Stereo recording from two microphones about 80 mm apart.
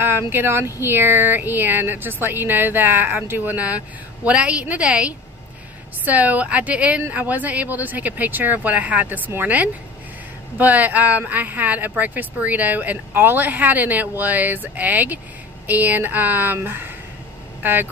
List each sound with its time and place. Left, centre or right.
0.3 s speech: right